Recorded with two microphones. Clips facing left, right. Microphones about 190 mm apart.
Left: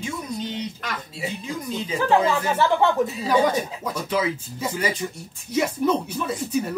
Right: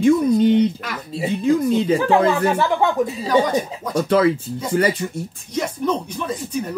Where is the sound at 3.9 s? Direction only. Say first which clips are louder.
Right 9 dB; 55° right (ahead or behind).